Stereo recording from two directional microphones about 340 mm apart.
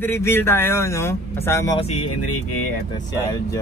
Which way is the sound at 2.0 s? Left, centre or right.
Left.